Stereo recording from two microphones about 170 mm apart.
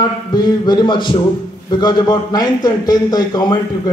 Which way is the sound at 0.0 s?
25° left (ahead or behind).